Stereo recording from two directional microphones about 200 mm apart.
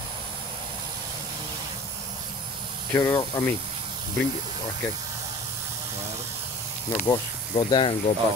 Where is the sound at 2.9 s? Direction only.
15° left (ahead or behind).